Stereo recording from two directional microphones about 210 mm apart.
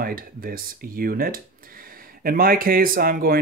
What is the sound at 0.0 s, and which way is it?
Speech, 45° right (ahead or behind).